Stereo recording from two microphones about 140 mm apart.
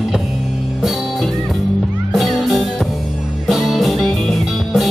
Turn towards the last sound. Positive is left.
turn(degrees=0)  # may be behind; listen again after turning